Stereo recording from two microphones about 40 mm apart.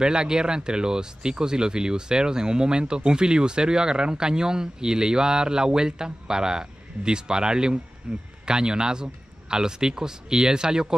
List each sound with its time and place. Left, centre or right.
0.0 s a man's voice: centre